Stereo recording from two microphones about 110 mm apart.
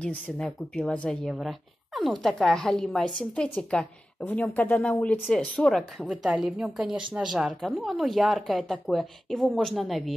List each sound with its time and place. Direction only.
0.4 s speech: 5° left (ahead or behind)